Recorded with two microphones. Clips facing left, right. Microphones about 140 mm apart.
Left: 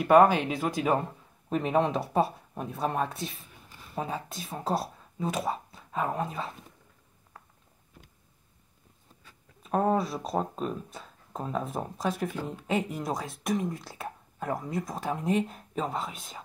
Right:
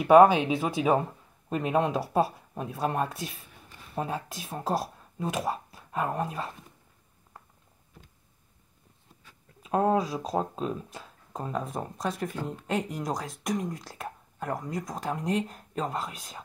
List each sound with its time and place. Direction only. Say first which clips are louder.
0.0 s speech: right 2 dB; 5° right (ahead or behind)
9.6 s speech: right 1 dB; centre (ahead or behind)